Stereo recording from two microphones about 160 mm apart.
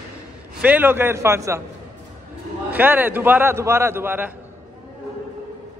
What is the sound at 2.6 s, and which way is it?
A man's voice, 10° right (ahead or behind).